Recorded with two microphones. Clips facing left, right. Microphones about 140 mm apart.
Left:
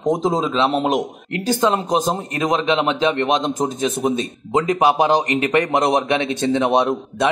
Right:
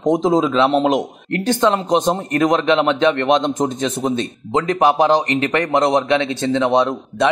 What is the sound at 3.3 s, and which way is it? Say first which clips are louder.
A man's voice: right 3 dB; 5° left (ahead or behind).